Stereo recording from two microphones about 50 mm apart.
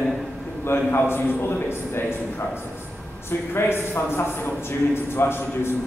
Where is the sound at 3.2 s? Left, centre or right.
Left.